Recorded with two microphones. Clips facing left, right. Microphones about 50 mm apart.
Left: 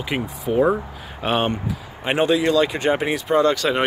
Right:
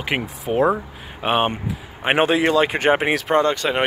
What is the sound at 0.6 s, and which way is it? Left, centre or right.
Speech, centre.